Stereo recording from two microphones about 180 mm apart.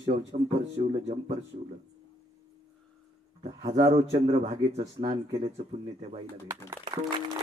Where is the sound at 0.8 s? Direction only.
35° right (ahead or behind).